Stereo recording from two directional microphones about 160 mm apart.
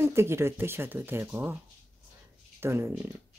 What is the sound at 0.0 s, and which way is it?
A woman's voice, 15° right (ahead or behind).